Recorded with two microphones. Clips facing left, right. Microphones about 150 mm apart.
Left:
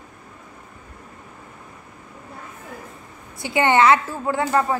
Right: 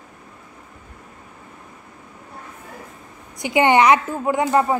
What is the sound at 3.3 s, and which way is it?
A woman's voice, 20° right (ahead or behind).